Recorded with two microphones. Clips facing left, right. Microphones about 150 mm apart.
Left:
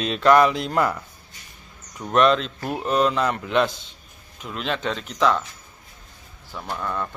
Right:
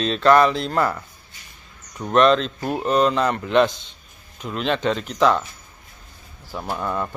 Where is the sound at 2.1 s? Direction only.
5° left (ahead or behind).